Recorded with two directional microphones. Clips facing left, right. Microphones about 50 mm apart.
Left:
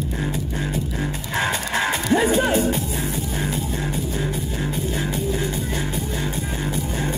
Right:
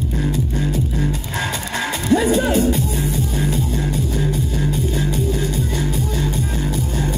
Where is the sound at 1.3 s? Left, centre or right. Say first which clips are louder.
Left 1 dB; left.